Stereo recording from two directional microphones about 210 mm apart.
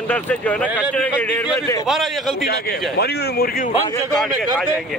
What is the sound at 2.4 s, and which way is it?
Speech, 50° left (ahead or behind).